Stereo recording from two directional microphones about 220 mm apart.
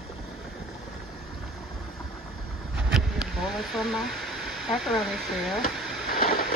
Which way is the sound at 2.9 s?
Centre (ahead or behind).